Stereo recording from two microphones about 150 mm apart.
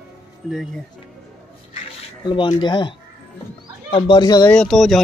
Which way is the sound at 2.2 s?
30° left (ahead or behind).